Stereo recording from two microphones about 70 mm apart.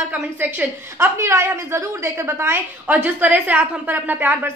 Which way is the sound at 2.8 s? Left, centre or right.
Right.